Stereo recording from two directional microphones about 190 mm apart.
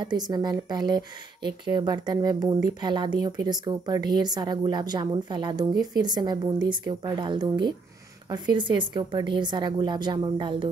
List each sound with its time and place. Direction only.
0.0 s speech: 20° right (ahead or behind)